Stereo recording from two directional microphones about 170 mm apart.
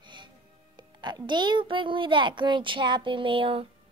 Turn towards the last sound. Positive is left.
turn(degrees=-30)  # may be behind; listen again after turning